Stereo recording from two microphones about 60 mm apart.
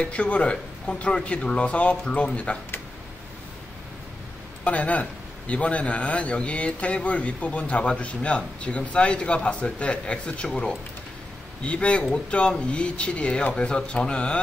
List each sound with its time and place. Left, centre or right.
0.0 s a man's voice: left
4.6 s a man's voice: left